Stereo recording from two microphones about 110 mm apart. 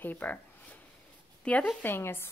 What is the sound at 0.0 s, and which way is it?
Speech, 15° left (ahead or behind).